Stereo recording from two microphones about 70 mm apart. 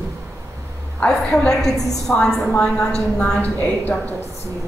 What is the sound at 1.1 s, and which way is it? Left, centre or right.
A woman's voice, centre.